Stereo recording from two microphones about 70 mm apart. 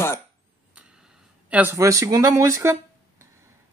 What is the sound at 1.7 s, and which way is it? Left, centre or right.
Speech, right.